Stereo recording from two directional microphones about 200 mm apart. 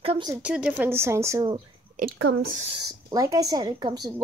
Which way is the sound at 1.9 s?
45° right (ahead or behind).